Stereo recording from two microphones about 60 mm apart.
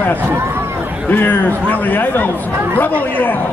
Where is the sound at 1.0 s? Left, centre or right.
Left.